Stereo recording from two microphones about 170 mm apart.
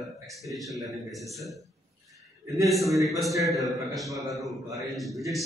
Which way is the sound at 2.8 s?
Centre (ahead or behind).